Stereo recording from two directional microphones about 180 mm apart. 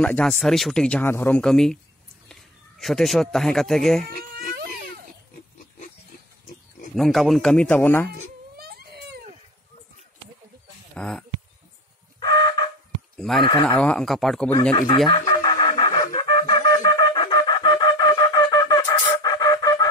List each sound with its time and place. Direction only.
0.0 s speech: 5° left (ahead or behind)
2.8 s speech: centre (ahead or behind)
7.0 s speech: centre (ahead or behind)
8.5 s baby cry: 60° right (ahead or behind)
11.0 s speech: 5° left (ahead or behind)
12.2 s chicken: 20° left (ahead or behind)
13.4 s speech: 25° left (ahead or behind)
13.7 s speech: 5° left (ahead or behind)
15.0 s chicken: 25° left (ahead or behind)
16.1 s wind instrument: 25° left (ahead or behind)